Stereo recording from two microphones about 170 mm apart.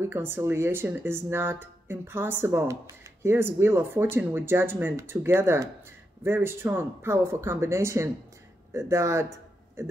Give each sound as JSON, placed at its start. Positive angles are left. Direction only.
{"t": 0.0, "sound": "a man's voice", "side_deg": -15}